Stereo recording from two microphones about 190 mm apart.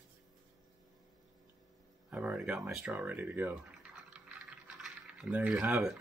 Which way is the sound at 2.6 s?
5° right (ahead or behind).